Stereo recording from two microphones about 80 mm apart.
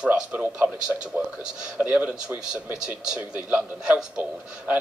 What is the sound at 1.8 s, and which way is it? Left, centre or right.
A man's voice, centre.